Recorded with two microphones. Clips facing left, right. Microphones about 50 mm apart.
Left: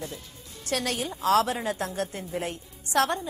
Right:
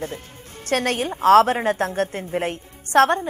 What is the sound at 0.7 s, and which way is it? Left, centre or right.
Speech, right.